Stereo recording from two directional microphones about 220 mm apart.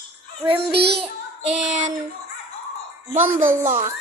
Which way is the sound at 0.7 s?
50° right (ahead or behind).